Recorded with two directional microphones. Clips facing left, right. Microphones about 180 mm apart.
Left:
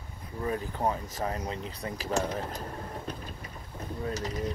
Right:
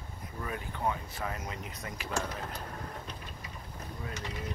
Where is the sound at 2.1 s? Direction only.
20° left (ahead or behind).